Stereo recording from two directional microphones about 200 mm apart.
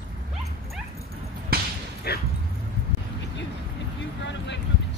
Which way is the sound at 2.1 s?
55° left (ahead or behind).